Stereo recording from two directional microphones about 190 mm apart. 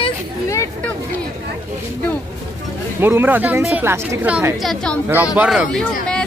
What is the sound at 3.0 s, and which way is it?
A woman's voice, 10° right (ahead or behind).